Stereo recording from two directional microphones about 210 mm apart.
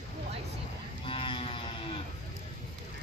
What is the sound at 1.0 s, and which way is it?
Cattle, 25° left (ahead or behind).